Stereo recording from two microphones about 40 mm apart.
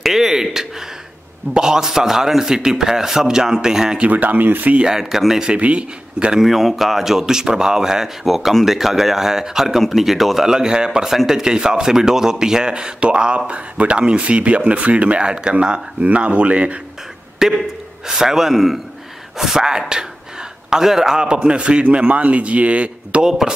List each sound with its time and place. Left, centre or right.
0.0 s a sound: centre
1.5 s speech: centre
4.1 s speech: right
4.8 s speech: centre
5.6 s a man's voice: right
6.4 s speech: centre
9.7 s speech: centre
10.5 s speech: centre
11.1 s speech: centre; by 16.8 s right
17.4 s a man's voice: centre; by 23.2 s right
23.2 s speech: centre